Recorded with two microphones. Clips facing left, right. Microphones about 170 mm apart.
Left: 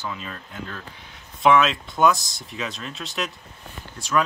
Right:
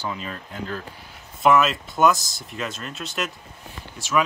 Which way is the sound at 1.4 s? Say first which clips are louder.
Even; 5° right (ahead or behind).